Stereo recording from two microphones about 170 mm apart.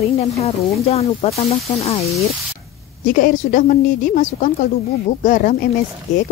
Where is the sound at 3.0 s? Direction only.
50° left (ahead or behind).